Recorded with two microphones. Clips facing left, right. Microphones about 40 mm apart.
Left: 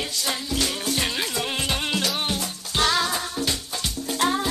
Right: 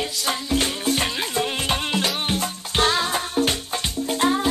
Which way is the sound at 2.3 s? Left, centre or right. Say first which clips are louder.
Right 3 dB; right.